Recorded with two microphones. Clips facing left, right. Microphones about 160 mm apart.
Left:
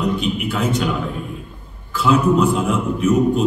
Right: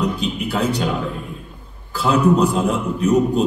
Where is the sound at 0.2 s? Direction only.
35° right (ahead or behind).